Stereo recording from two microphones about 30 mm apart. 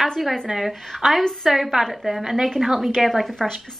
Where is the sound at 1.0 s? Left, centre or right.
Centre.